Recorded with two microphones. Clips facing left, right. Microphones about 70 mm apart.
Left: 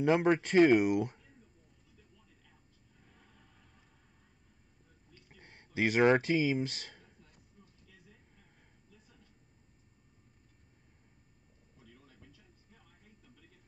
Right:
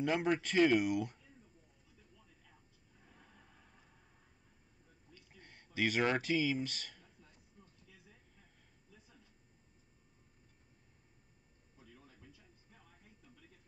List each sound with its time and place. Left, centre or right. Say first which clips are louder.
0.2 s speech: left 6 dB; left
5.1 s a sound: left 2 dB; left
5.8 s speech: left 7 dB; left